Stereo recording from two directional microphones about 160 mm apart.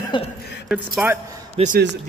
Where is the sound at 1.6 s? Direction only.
40° right (ahead or behind).